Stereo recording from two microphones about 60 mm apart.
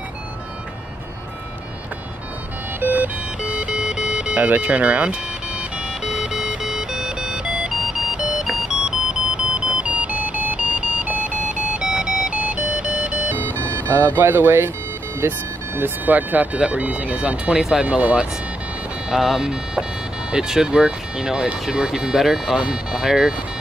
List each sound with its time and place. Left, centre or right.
2.8 s music: right
13.4 s music: left
13.8 s speech: right
17.5 s speech: centre
17.8 s speech: right
19.0 s speech: centre